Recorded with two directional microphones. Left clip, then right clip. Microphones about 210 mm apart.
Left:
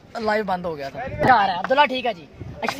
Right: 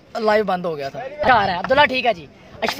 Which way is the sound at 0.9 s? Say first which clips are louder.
Even; 45° right (ahead or behind).